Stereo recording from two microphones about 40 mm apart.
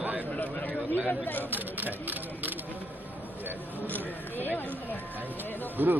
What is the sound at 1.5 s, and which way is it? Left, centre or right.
Speech, right.